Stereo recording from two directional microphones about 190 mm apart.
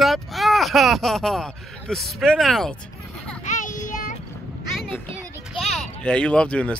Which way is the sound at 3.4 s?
40° left (ahead or behind).